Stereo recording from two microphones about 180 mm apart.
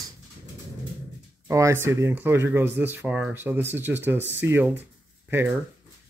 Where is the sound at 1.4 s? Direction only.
15° right (ahead or behind).